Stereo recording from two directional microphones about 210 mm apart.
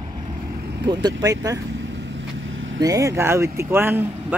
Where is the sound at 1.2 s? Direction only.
15° right (ahead or behind).